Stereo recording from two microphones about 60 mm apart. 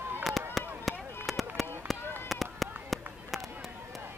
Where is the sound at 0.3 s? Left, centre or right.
Centre.